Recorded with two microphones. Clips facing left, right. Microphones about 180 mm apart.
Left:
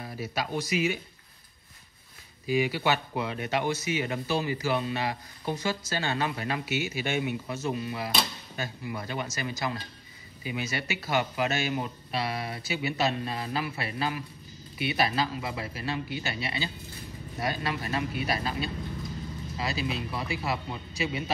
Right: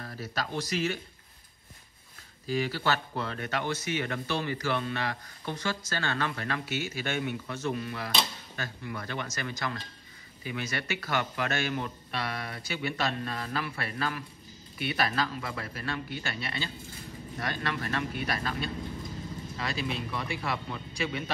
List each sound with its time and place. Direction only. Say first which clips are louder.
0.0 s speech: left 2 dB; 10° left (ahead or behind)
2.4 s speech: left 3 dB; 10° left (ahead or behind)